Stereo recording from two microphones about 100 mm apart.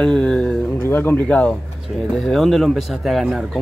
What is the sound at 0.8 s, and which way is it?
Speech, 20° left (ahead or behind).